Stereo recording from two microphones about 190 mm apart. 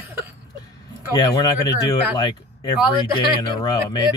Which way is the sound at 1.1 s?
20° left (ahead or behind).